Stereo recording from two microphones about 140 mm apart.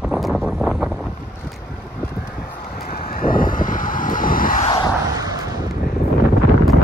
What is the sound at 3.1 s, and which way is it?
Vehicle, 90° left.